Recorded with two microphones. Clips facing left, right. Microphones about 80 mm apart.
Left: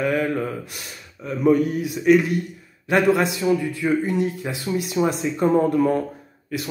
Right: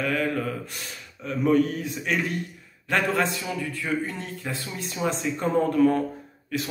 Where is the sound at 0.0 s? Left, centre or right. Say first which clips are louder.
Left 4 dB; left.